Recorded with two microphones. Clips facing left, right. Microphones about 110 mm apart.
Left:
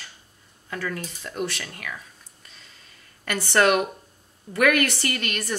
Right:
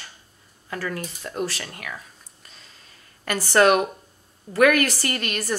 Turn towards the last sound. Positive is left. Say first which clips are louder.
# right 2 dB
turn(degrees=-35)  # may be behind; listen again after turning